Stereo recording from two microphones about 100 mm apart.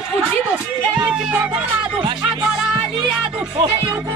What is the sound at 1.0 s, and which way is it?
Music, 15° right (ahead or behind).